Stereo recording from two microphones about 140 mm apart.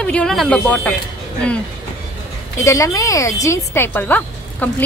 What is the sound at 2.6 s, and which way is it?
Speech, 20° left (ahead or behind).